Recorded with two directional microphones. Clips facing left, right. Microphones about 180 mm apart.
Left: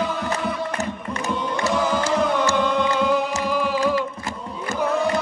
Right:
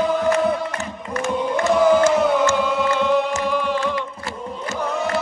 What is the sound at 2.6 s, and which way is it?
Music, 5° right (ahead or behind).